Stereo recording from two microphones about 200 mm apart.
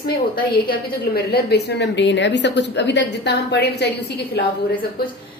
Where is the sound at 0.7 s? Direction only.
50° left (ahead or behind).